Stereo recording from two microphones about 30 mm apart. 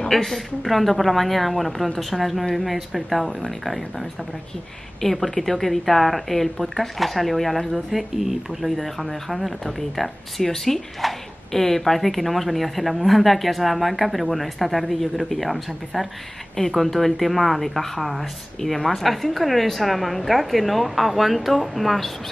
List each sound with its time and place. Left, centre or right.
0.1 s speech: centre
16.5 s speech: centre
18.8 s speech: centre